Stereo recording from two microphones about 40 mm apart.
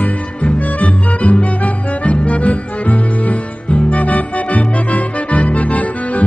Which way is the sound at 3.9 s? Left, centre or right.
Left.